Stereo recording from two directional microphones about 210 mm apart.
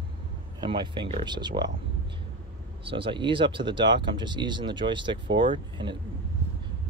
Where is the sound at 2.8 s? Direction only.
25° right (ahead or behind).